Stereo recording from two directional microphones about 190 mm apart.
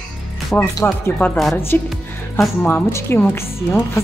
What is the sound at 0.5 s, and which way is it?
A woman's voice, 10° left (ahead or behind).